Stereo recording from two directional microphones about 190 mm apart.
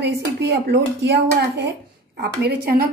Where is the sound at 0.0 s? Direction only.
60° right (ahead or behind).